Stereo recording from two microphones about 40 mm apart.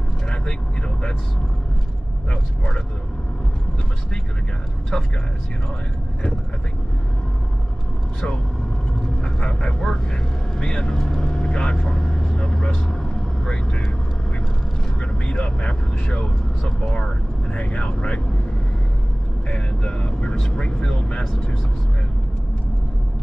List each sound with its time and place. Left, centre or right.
0.3 s speech: left
4.9 s speech: left
9.2 s speech: left
15.0 s speech: left
19.5 s speech: left